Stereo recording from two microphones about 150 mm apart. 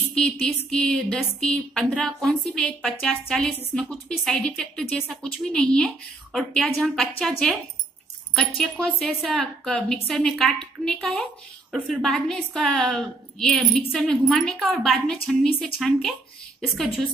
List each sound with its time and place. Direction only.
0.1 s a woman's voice: 5° left (ahead or behind)